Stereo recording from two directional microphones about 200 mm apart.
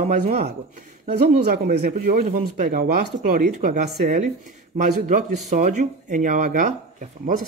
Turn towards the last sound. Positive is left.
turn(degrees=-40)  # may be behind; listen again after turning